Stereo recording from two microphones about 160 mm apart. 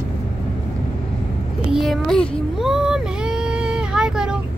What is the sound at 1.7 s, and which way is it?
Child singing, centre (ahead or behind).